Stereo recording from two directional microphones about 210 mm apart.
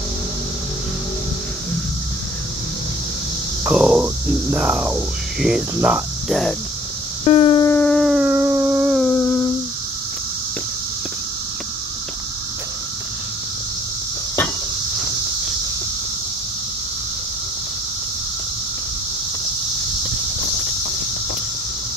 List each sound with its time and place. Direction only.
3.6 s speech: 5° right (ahead or behind)
7.2 s a sound: 25° left (ahead or behind)
7.6 s music: 10° left (ahead or behind)
9.0 s humming: 10° left (ahead or behind)